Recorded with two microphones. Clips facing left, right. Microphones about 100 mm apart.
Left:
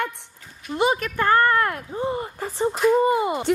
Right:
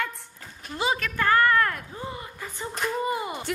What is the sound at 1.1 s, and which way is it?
Speech, 25° left (ahead or behind).